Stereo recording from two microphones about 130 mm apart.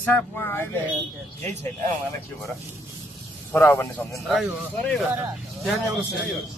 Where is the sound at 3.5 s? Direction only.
15° left (ahead or behind).